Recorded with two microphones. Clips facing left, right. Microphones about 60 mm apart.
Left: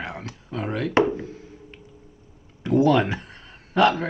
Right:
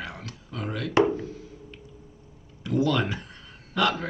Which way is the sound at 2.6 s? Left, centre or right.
Left.